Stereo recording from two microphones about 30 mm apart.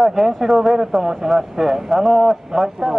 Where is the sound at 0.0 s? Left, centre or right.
Centre.